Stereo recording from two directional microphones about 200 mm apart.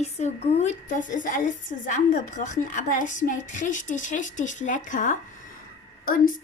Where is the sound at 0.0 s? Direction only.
35° left (ahead or behind).